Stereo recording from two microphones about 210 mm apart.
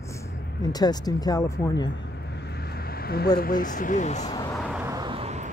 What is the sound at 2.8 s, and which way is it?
Speech, 45° left (ahead or behind).